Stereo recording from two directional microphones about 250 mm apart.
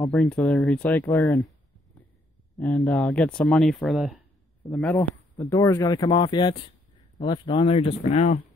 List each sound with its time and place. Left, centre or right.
0.0 s speech: centre
2.5 s speech: centre; by 8.4 s left